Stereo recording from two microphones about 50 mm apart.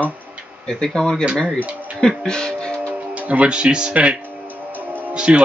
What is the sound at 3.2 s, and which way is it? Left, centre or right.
Speech, right.